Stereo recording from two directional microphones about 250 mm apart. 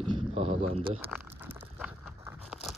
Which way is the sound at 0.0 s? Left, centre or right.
Right.